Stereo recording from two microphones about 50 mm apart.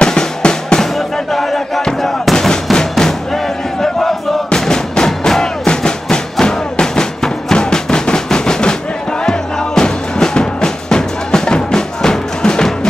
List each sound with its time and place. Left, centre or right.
0.0 s drum: centre
0.9 s music: centre
1.8 s a sound: centre
2.3 s music: centre